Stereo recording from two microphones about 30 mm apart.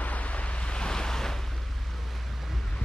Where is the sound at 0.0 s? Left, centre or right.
Left.